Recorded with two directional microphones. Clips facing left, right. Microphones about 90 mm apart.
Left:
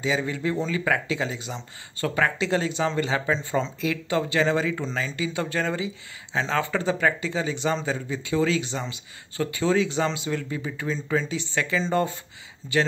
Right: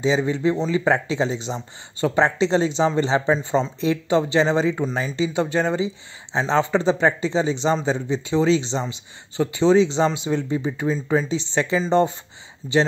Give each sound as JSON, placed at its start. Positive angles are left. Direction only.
{"t": 0.0, "sound": "speech", "side_deg": -25}
{"t": 3.3, "sound": "speech", "side_deg": -15}
{"t": 3.8, "sound": "speech", "side_deg": -25}